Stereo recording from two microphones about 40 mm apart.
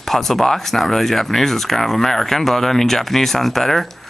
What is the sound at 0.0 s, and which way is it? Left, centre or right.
Speech, centre.